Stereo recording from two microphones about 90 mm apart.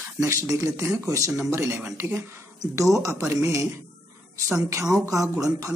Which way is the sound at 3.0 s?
35° right (ahead or behind).